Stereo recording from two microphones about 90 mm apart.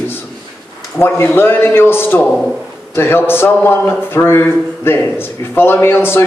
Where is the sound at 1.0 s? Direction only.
25° left (ahead or behind).